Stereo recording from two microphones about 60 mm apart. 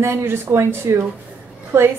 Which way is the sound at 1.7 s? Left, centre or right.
Right.